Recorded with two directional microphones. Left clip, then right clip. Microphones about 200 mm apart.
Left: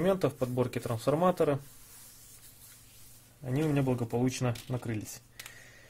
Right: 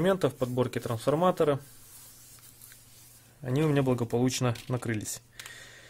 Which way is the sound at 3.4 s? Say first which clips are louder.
Right 4 dB; 20° right (ahead or behind).